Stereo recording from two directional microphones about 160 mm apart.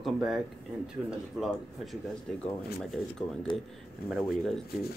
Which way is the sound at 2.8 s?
Centre (ahead or behind).